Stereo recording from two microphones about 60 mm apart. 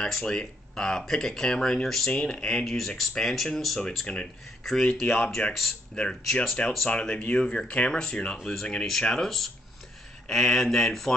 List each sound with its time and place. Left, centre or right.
0.0 s speech: centre